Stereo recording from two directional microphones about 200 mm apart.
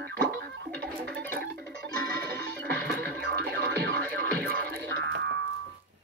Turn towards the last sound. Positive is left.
turn(degrees=-55)  # may be behind; listen again after turning